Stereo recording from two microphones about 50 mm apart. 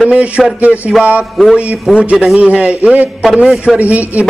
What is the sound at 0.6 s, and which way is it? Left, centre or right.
Speech, right.